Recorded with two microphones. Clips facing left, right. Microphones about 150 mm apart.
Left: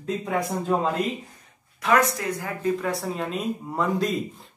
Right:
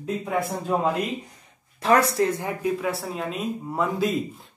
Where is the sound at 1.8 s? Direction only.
30° right (ahead or behind).